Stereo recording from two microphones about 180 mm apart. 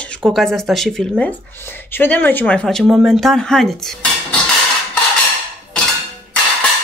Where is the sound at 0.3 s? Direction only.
Centre (ahead or behind).